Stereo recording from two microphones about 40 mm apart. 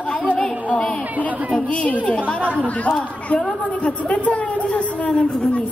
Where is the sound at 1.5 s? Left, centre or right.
Left.